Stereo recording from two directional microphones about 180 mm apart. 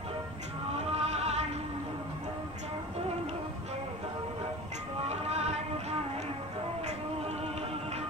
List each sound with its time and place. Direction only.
0.8 s music: 35° right (ahead or behind)
5.0 s music: 35° right (ahead or behind)